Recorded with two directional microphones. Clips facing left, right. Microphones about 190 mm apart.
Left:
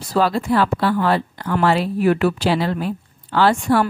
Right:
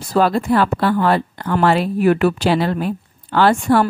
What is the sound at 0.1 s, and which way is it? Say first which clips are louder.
A woman's voice: right 2 dB; 50° right (ahead or behind).